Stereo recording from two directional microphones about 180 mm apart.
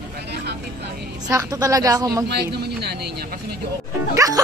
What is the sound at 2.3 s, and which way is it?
Speech, 65° right (ahead or behind).